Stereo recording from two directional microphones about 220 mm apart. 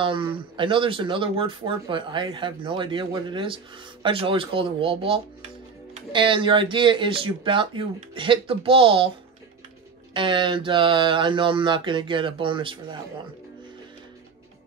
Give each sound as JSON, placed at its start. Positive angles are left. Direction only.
{"t": 0.0, "sound": "speech", "side_deg": -25}
{"t": 10.1, "sound": "speech", "side_deg": -20}